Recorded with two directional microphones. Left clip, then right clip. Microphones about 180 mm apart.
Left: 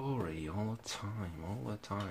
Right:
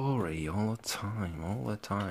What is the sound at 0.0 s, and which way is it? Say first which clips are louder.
Speech: right 6 dB; 35° right (ahead or behind).